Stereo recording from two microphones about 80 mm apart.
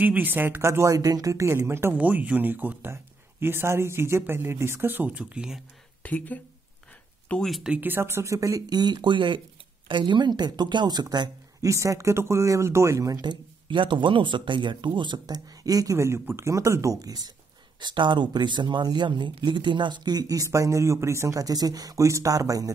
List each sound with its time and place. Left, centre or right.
0.0 s speech: right
2.0 s speech: centre
6.0 s speech: centre
7.4 s speech: centre
7.7 s speech: right
11.6 s speech: right
13.2 s speech: right
17.7 s speech: right